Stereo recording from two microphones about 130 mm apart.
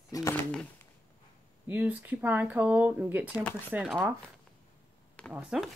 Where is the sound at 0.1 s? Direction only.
25° left (ahead or behind).